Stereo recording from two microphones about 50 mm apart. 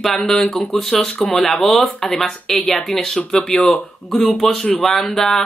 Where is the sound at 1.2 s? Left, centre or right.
Left.